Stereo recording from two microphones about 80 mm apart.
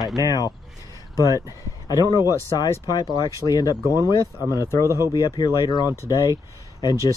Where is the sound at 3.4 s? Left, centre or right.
Left.